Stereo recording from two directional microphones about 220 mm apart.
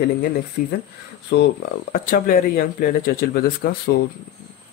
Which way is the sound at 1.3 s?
50° left (ahead or behind).